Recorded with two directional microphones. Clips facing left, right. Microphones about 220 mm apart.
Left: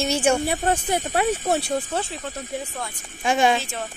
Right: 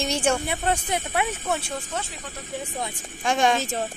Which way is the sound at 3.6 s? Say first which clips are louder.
Right 3 dB; 40° right (ahead or behind).